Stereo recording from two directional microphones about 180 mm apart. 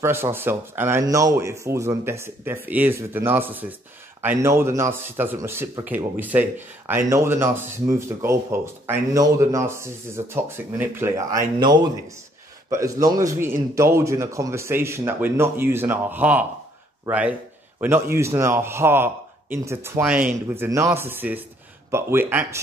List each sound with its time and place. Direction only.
0.0 s a man's voice: 15° right (ahead or behind)